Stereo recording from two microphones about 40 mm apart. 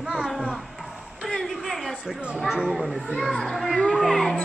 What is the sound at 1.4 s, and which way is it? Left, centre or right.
Speech, centre.